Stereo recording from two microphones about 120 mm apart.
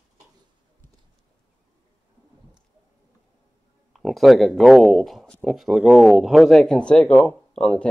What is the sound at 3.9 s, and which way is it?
Speech, centre (ahead or behind).